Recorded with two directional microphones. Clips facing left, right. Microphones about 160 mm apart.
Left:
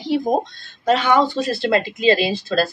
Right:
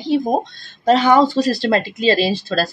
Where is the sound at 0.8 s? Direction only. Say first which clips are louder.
Right 4 dB; 35° right (ahead or behind).